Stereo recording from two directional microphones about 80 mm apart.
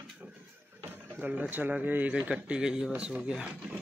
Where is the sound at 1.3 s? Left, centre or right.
Right.